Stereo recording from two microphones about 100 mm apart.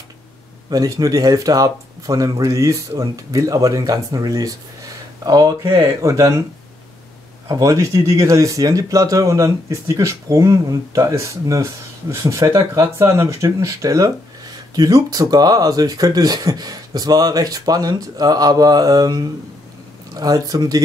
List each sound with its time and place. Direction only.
0.7 s speech: 40° right (ahead or behind)
7.4 s speech: 35° right (ahead or behind)